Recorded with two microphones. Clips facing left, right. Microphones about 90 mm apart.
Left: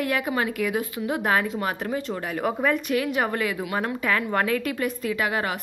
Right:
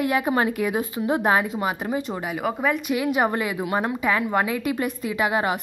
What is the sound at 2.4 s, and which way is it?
A woman's voice, 5° right (ahead or behind).